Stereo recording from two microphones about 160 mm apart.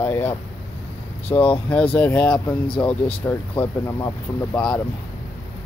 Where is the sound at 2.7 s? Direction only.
30° left (ahead or behind).